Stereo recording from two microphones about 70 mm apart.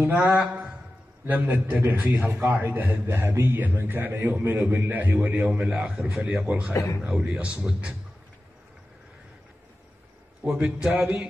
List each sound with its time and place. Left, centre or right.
0.0 s speech: right
5.4 s a man's voice: centre
6.0 s a man's voice: centre
7.0 s a man's voice: centre
7.2 s speech: centre
10.4 s a man's voice: centre